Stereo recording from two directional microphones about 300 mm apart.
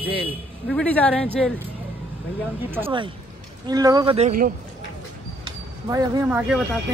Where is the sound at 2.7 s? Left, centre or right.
Centre.